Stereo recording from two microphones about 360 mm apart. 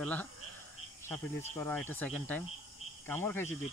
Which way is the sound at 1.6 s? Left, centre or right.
Centre.